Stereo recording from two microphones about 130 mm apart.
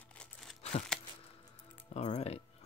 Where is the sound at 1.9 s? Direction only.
55° left (ahead or behind).